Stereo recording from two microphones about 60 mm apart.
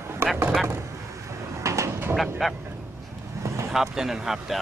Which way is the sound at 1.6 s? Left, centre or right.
Right.